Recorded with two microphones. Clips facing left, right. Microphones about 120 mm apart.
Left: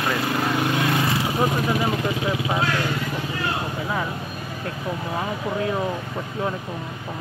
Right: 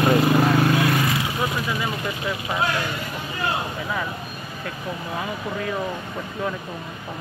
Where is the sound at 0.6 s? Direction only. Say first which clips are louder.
Right 2 dB; 25° left (ahead or behind).